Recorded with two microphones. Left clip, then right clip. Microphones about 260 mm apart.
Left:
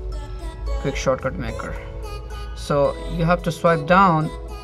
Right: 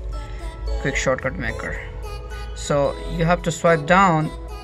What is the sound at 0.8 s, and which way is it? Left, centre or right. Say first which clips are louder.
Speech: right 1 dB; centre.